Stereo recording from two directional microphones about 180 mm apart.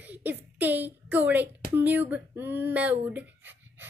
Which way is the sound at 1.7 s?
10° right (ahead or behind).